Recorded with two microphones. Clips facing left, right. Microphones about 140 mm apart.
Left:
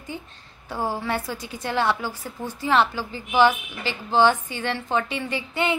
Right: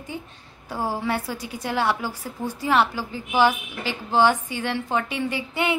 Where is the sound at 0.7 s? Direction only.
10° right (ahead or behind).